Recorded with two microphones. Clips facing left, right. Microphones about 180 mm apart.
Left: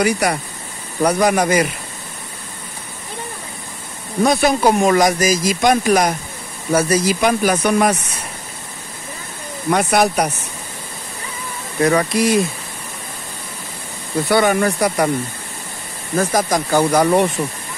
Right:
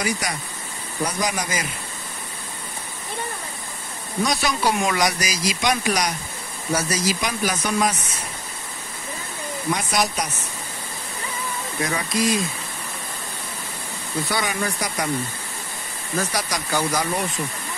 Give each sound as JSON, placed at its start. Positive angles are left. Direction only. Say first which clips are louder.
{"t": 0.0, "sound": "speech", "louder": "left 9 dB", "side_deg": 65}
{"t": 4.2, "sound": "speech", "louder": "left 8 dB", "side_deg": 55}
{"t": 9.7, "sound": "speech", "louder": "left 8 dB", "side_deg": 60}
{"t": 11.8, "sound": "speech", "louder": "left 8 dB", "side_deg": 65}
{"t": 14.3, "sound": "speech", "louder": "left 12 dB", "side_deg": 60}
{"t": 16.2, "sound": "speech", "louder": "left 9 dB", "side_deg": 50}